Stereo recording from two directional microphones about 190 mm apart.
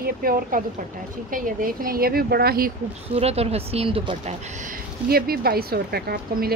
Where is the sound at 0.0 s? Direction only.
50° right (ahead or behind).